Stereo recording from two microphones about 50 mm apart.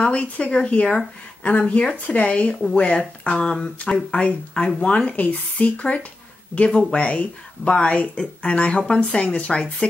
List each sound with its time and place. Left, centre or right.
0.1 s speech: left
5.1 s speech: left
8.8 s speech: centre
9.2 s speech: left